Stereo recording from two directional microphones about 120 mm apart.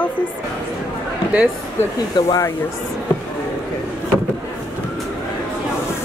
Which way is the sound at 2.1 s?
40° left (ahead or behind).